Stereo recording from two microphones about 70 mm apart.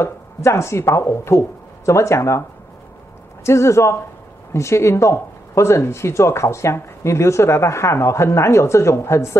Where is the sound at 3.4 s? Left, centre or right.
Left.